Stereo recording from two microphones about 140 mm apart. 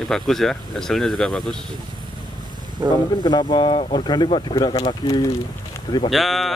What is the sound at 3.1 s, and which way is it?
Speech, 30° left (ahead or behind).